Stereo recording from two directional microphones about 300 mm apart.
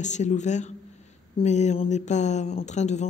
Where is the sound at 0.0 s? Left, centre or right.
Left.